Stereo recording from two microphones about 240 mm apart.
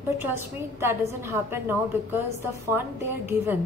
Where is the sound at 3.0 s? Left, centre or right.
Centre.